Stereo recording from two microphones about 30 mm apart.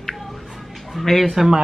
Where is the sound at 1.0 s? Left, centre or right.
Centre.